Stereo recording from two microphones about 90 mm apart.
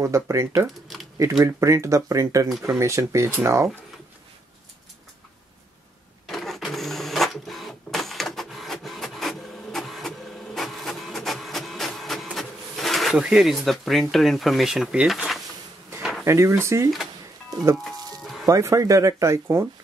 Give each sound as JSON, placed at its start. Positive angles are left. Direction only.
{"t": 0.0, "sound": "speech", "side_deg": -35}
{"t": 0.6, "sound": "a sound", "side_deg": 0}
{"t": 1.4, "sound": "speech", "side_deg": -35}
{"t": 6.2, "sound": "printer", "side_deg": 0}
{"t": 13.2, "sound": "speech", "side_deg": -5}
{"t": 15.0, "sound": "bee", "side_deg": 0}
{"t": 16.0, "sound": "drawer open or close", "side_deg": 0}
{"t": 16.3, "sound": "speech", "side_deg": -30}
{"t": 18.2, "sound": "music", "side_deg": 0}
{"t": 18.5, "sound": "speech", "side_deg": -35}